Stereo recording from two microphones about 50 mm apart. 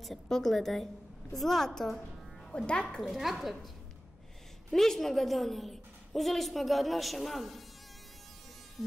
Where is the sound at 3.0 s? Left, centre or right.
Centre.